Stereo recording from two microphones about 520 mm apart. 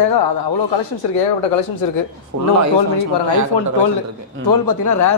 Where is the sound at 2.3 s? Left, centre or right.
Right.